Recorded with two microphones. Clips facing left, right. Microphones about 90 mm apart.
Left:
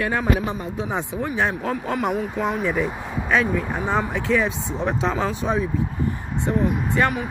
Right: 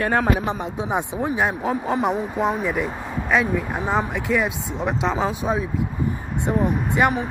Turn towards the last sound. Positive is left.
turn(degrees=-15)  # may be behind; listen again after turning